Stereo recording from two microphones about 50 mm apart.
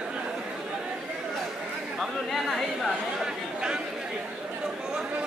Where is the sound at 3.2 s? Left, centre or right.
Centre.